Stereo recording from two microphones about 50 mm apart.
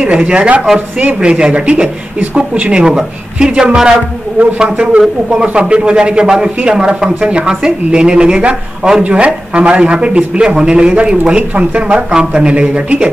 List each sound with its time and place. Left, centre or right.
0.0 s a man's voice: right
0.7 s speech: right
1.2 s a man's voice: right